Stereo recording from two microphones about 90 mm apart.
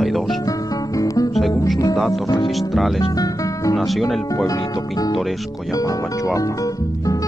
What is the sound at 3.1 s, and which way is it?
Music, 40° left (ahead or behind).